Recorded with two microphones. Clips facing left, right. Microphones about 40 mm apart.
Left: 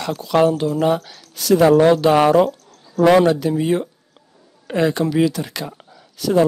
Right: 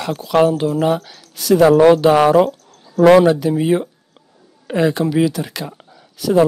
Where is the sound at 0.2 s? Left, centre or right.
Centre.